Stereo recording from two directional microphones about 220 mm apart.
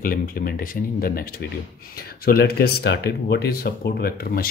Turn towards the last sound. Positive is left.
turn(degrees=45)  # may be behind; listen again after turning